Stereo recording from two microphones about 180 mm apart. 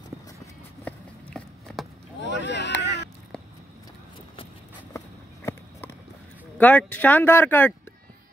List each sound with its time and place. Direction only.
0.8 s horse: centre (ahead or behind)
2.2 s a sound: 75° left (ahead or behind)
4.9 s walk: 15° left (ahead or behind)
6.6 s speech: 10° left (ahead or behind)